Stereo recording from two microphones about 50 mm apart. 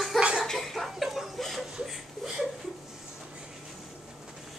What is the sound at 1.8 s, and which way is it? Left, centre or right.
Chuckle, centre.